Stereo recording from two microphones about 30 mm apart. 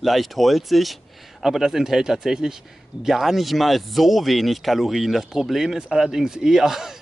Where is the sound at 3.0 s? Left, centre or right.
Centre.